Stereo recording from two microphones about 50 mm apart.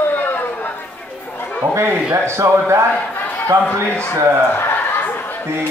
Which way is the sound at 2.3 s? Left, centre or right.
Right.